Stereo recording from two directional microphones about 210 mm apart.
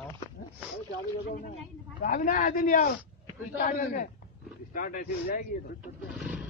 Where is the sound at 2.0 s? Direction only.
40° left (ahead or behind).